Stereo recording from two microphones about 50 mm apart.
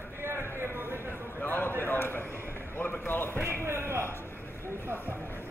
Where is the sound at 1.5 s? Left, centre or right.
Left.